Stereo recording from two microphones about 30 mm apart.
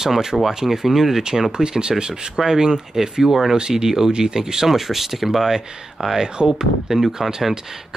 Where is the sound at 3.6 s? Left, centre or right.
Right.